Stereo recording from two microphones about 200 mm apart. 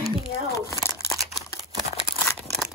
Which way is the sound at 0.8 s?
15° left (ahead or behind).